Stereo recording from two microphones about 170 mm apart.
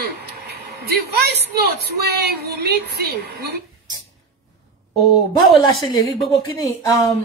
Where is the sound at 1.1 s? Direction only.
70° right (ahead or behind).